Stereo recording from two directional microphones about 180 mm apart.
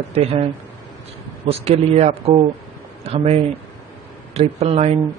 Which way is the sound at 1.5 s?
35° right (ahead or behind).